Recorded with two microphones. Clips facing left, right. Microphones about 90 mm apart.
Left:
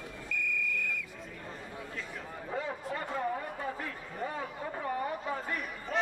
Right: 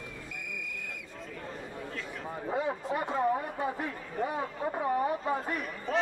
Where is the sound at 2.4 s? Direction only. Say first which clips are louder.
Right 5 dB; 20° right (ahead or behind).